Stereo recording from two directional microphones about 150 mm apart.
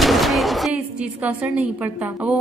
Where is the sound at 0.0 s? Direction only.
Centre (ahead or behind).